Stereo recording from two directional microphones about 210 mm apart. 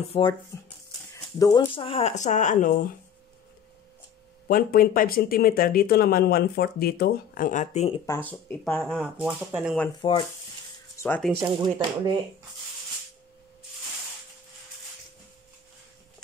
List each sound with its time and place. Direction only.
0.1 s speech: 20° left (ahead or behind); by 2.9 s 40° left (ahead or behind)
4.5 s speech: 45° left (ahead or behind)
8.1 s speech: 10° left (ahead or behind)
10.0 s speech: 25° left (ahead or behind)
11.0 s speech: 10° left (ahead or behind)
11.3 s speech: 25° right (ahead or behind)